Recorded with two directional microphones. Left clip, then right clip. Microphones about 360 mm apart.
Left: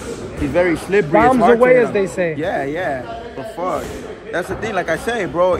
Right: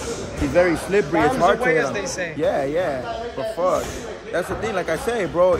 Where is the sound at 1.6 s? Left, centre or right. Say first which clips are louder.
Left 8 dB; centre.